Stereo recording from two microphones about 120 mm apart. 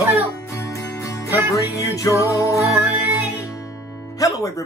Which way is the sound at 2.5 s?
25° right (ahead or behind).